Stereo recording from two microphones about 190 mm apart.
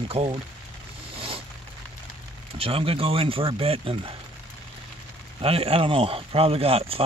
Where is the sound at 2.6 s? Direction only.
30° right (ahead or behind).